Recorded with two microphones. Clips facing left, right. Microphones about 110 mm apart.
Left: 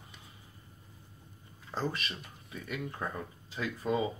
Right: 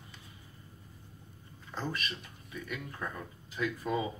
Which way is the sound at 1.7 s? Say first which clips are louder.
Left 2 dB; 30° left (ahead or behind).